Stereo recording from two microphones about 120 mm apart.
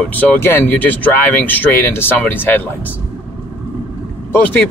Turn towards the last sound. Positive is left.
turn(degrees=15)  # may be behind; listen again after turning